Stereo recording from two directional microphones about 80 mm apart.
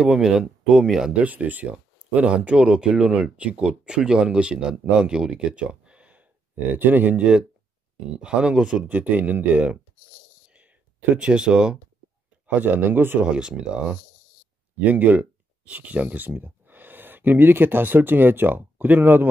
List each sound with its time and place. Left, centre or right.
0.0 s speech: centre
1.2 s speech: centre
10.5 s a sound: centre
12.4 s speech: right
13.3 s speech: centre